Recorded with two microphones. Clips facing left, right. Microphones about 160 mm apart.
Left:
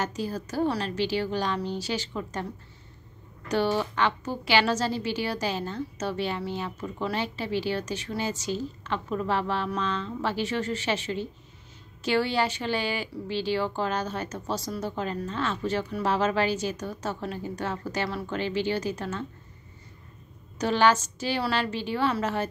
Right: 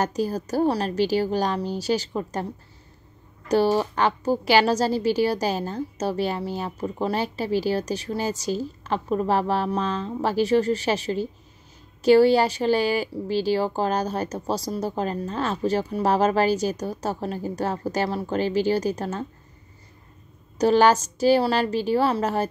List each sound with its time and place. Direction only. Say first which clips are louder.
0.0 s a woman's voice: right 6 dB; 40° right (ahead or behind)
3.4 s a woman's voice: right 5 dB; 40° right (ahead or behind)
20.5 s a woman's voice: right 5 dB; 40° right (ahead or behind)